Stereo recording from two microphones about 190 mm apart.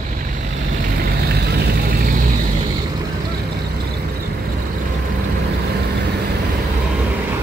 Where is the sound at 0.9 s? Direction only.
60° right (ahead or behind).